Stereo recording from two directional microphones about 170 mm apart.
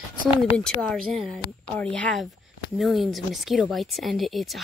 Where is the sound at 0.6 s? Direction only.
5° left (ahead or behind).